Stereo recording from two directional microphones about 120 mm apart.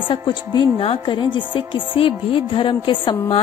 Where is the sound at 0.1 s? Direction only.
40° left (ahead or behind).